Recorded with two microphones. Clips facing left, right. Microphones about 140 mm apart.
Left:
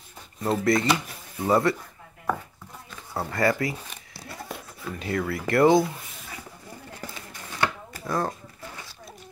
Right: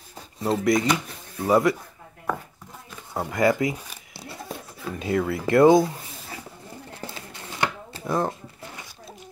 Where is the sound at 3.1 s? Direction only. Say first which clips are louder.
Right 3 dB; 15° right (ahead or behind).